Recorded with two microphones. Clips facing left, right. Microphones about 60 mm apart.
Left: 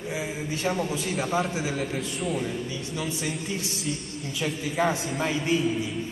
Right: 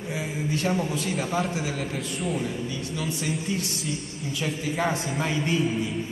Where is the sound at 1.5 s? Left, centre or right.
Centre.